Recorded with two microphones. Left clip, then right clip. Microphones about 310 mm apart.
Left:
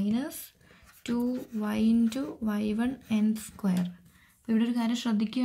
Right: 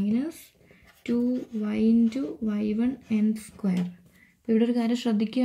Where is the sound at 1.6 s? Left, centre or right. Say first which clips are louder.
Right 3 dB; centre.